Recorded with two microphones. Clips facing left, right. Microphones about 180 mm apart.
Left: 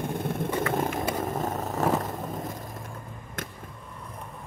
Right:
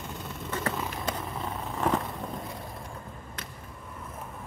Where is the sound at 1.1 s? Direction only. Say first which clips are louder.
Left 6 dB; 45° left (ahead or behind).